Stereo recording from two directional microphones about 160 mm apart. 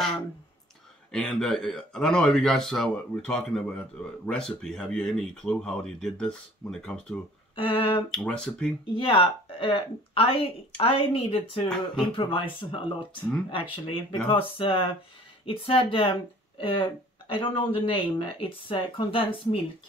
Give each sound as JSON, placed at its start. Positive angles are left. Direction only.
{"t": 1.1, "sound": "speech", "side_deg": 5}
{"t": 7.5, "sound": "speech", "side_deg": 35}
{"t": 8.1, "sound": "speech", "side_deg": 5}
{"t": 8.9, "sound": "speech", "side_deg": 35}